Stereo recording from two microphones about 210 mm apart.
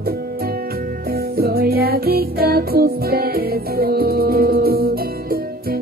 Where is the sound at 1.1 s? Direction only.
45° right (ahead or behind).